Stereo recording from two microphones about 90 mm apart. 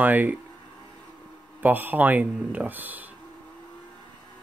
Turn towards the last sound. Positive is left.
turn(degrees=-20)  # may be behind; listen again after turning